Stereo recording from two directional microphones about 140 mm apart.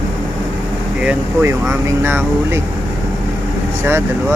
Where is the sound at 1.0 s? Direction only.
15° right (ahead or behind).